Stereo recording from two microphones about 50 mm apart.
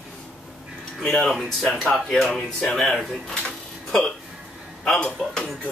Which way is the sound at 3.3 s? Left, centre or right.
Centre.